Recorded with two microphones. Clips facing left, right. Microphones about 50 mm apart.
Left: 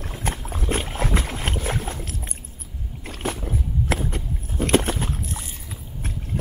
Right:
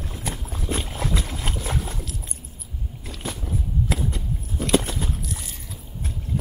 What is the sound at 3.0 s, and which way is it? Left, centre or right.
Vehicle, left.